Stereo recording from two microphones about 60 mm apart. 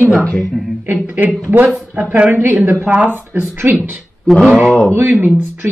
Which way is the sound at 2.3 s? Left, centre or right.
Right.